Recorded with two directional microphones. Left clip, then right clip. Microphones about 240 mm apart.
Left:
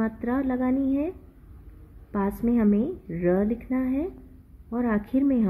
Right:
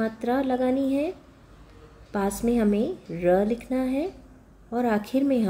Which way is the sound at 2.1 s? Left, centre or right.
Left.